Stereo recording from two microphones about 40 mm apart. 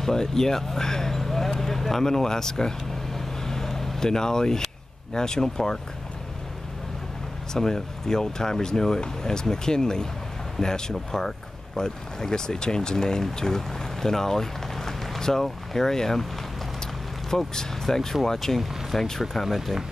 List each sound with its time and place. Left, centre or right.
0.0 s speech: centre
3.2 s vehicle: centre
5.1 s speech: centre
7.5 s speech: centre
17.6 s speech: centre